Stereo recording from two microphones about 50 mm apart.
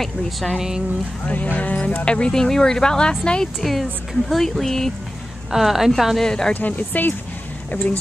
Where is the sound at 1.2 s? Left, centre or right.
Left.